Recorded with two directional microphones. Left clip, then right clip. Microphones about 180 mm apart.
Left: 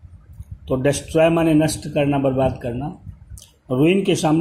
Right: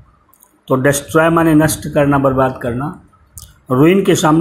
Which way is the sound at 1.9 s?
45° right (ahead or behind).